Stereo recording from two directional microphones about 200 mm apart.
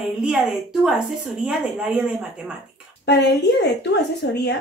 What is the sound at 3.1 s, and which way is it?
Speech, 55° left (ahead or behind).